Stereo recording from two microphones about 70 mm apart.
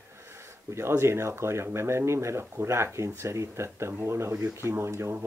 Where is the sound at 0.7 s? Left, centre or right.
Right.